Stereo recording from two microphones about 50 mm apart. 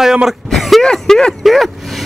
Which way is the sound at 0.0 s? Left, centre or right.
Centre.